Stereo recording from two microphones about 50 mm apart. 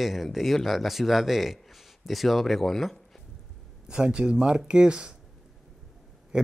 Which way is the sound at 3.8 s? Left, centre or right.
Centre.